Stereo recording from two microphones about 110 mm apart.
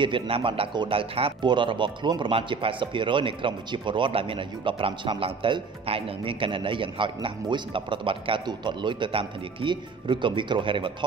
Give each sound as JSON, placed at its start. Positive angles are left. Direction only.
{"t": 0.0, "sound": "speech", "side_deg": -50}